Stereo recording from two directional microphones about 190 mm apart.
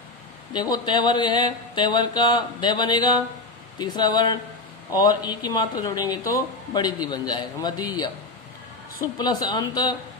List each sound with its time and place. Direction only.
0.5 s speech: 20° left (ahead or behind)
9.2 s speech: 20° left (ahead or behind)